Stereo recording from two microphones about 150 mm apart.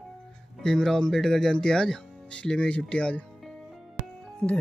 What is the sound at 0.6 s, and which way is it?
Speech, 5° left (ahead or behind).